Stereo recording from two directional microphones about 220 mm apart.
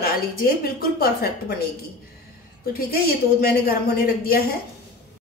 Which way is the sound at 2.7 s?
45° left (ahead or behind).